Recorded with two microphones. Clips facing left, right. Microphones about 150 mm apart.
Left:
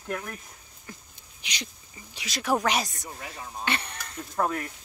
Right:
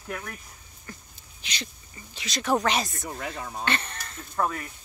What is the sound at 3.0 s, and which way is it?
Speech, 65° right (ahead or behind).